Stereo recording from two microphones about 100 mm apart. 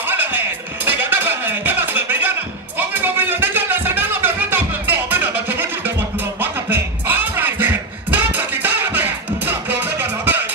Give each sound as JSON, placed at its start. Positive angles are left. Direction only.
{"t": 0.0, "sound": "music", "side_deg": -20}
{"t": 0.9, "sound": "a sound", "side_deg": -20}
{"t": 2.9, "sound": "music", "side_deg": -20}